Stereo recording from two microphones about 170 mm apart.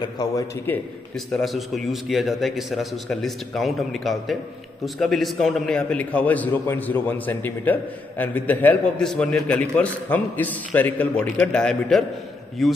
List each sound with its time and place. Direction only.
0.2 s a man's voice: 20° left (ahead or behind)
1.1 s a man's voice: centre (ahead or behind)